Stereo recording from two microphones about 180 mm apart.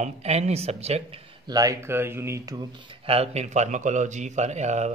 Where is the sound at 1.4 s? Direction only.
20° right (ahead or behind).